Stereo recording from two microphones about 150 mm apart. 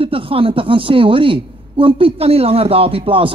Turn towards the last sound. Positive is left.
turn(degrees=-35)  # may be behind; listen again after turning